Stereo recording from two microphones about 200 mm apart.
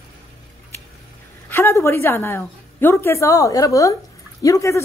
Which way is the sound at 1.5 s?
10° left (ahead or behind).